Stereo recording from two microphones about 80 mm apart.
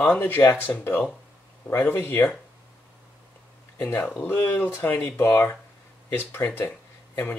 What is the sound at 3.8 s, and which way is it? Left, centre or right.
Speech, left.